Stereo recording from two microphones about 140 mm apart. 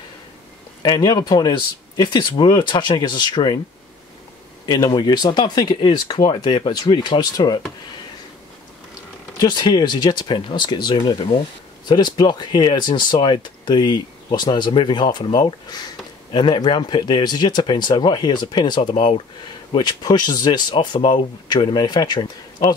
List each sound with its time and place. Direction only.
0.8 s speech: 30° left (ahead or behind)
4.6 s speech: 30° left (ahead or behind)
9.4 s speech: 30° left (ahead or behind)